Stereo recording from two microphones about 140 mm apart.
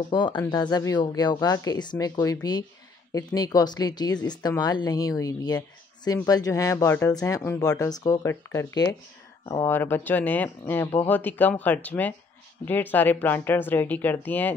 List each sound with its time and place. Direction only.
0.1 s speech: 35° left (ahead or behind)
3.3 s speech: 30° left (ahead or behind)